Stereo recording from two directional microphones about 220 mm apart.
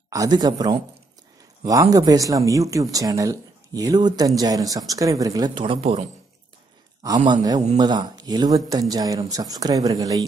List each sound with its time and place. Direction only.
0.1 s speech: 15° right (ahead or behind)
7.2 s speech: 20° right (ahead or behind)